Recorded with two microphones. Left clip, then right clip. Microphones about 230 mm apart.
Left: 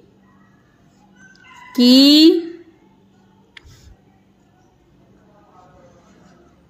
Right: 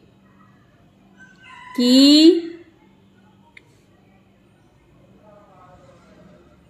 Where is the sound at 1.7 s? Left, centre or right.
Left.